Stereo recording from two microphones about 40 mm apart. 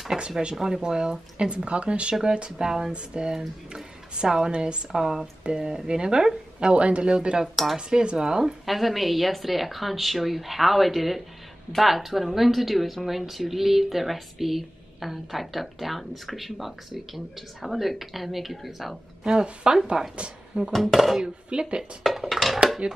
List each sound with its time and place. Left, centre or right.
0.1 s a woman's voice: centre
1.4 s speech: right
4.9 s speech: centre
5.4 s speech: right
8.6 s a woman's voice: centre
19.3 s speech: right
20.7 s a woman's voice: centre
21.5 s speech: right
22.3 s dishes: centre
22.8 s speech: right